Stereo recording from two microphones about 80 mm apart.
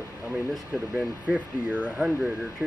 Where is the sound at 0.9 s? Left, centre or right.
Centre.